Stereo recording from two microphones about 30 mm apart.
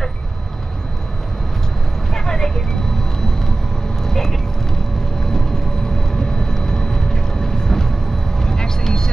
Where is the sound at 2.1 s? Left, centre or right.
Centre.